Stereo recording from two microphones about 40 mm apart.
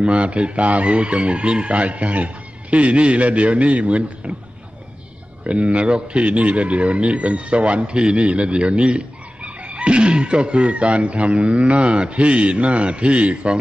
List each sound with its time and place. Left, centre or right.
0.0 s speech: right
5.4 s speech: right